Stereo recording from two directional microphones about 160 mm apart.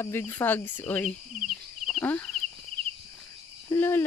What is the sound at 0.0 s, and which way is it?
Cricket, 15° left (ahead or behind).